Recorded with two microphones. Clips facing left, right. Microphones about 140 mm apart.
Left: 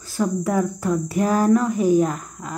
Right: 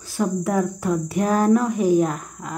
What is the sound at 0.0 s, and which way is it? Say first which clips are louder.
Speech: even; centre (ahead or behind).